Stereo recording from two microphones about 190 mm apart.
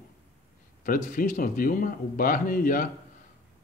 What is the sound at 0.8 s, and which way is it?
Speech, 45° left (ahead or behind).